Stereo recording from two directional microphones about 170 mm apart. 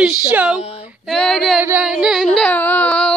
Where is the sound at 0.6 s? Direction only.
35° left (ahead or behind).